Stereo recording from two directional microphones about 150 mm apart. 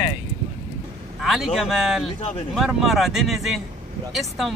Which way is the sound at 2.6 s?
5° right (ahead or behind).